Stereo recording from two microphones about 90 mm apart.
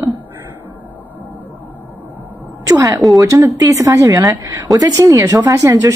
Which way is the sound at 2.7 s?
35° right (ahead or behind).